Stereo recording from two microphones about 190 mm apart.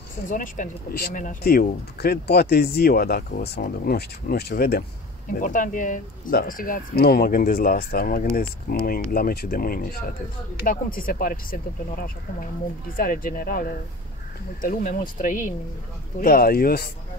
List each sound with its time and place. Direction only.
0.3 s speech: 45° left (ahead or behind)
5.3 s speech: 45° left (ahead or behind)